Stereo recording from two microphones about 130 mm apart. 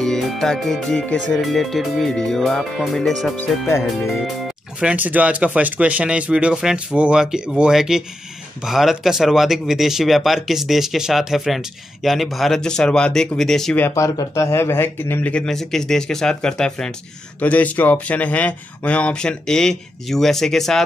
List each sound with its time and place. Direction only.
0.0 s speech: 5° left (ahead or behind)
3.3 s speech: 20° left (ahead or behind)
4.7 s speech: 10° right (ahead or behind)
13.7 s speech: 20° left (ahead or behind); by 20.8 s 5° left (ahead or behind)